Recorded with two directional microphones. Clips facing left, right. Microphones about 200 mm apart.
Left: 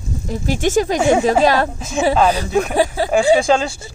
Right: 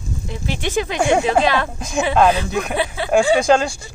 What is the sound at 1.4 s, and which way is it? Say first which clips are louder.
Speech: left 4 dB; 40° left (ahead or behind).